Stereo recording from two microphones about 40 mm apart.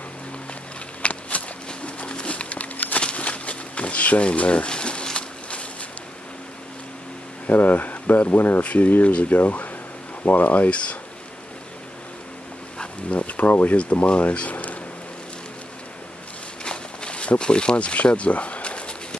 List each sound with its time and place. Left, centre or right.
1.0 s a sound: left
7.4 s speech: left
10.7 s speech: left
13.1 s speech: left
13.7 s speech: left
16.6 s a sound: left